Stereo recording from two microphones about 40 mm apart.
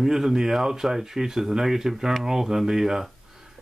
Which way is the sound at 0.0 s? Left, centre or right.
Centre.